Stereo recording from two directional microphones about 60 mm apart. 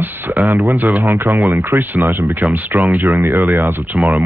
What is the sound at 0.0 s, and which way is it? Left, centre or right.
Speech, right.